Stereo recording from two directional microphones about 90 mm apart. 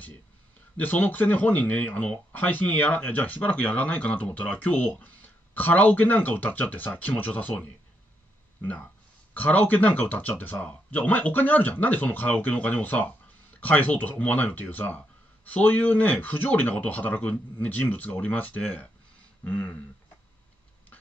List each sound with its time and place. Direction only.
0.7 s speech: 20° left (ahead or behind)
9.3 s speech: 20° left (ahead or behind)